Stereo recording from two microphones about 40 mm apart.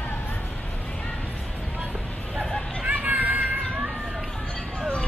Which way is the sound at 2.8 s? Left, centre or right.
Right.